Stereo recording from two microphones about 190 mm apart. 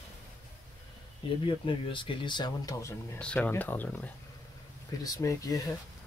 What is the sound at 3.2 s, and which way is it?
Speech, 5° left (ahead or behind).